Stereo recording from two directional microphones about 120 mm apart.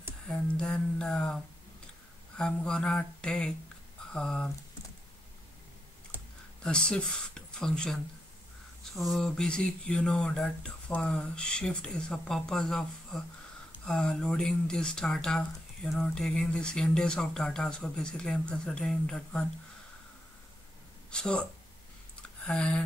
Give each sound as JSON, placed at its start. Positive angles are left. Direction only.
{"t": 0.3, "sound": "speech", "side_deg": 10}
{"t": 6.1, "sound": "computer keyboard", "side_deg": -15}
{"t": 6.6, "sound": "speech", "side_deg": 5}
{"t": 21.1, "sound": "speech", "side_deg": 5}
{"t": 22.5, "sound": "speech", "side_deg": 10}